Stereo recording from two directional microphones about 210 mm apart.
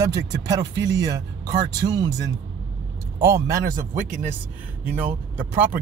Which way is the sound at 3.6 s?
40° right (ahead or behind).